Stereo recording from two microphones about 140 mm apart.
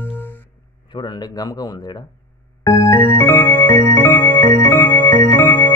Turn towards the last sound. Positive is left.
turn(degrees=15)  # may be behind; listen again after turning